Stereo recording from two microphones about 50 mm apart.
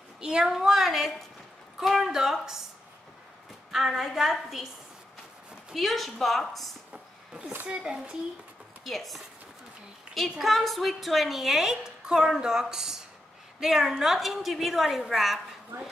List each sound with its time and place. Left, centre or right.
0.2 s a woman's voice: centre
3.7 s a woman's voice: centre
5.7 s a woman's voice: centre
6.9 s a sound: centre
7.6 s a woman's voice: centre
8.8 s a woman's voice: centre
10.4 s a woman's voice: centre